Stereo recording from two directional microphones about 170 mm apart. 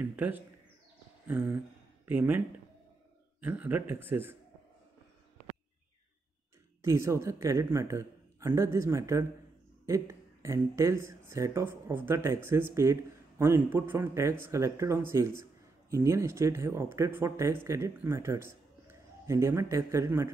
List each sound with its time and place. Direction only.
0.0 s speech: 10° right (ahead or behind)
6.8 s speech: 15° right (ahead or behind)